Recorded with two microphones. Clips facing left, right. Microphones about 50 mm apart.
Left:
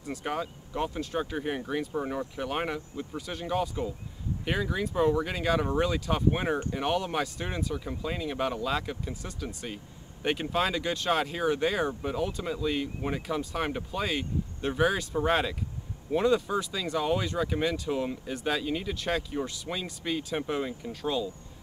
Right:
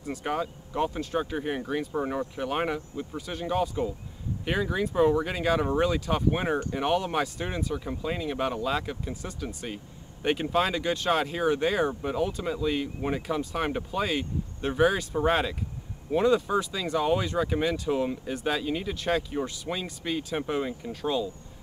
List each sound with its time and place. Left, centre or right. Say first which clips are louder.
0.0 s speech: right 3 dB; centre